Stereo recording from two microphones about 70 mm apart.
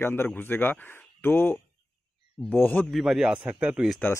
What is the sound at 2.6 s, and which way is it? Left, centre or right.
Speech, left.